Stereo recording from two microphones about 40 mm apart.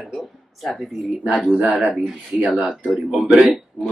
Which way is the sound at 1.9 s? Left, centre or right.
Centre.